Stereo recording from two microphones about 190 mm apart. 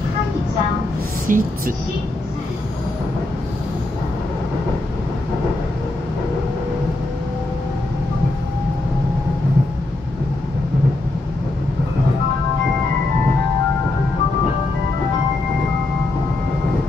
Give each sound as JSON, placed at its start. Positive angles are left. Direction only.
{"t": 1.3, "sound": "speech", "side_deg": -45}